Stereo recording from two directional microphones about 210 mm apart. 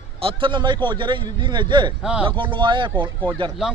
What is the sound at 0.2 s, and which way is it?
A man's voice, 25° right (ahead or behind).